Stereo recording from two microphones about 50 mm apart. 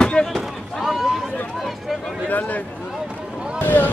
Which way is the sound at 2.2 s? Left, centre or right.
Left.